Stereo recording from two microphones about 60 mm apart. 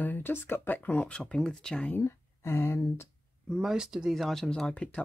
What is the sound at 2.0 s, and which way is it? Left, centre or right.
Speech, left.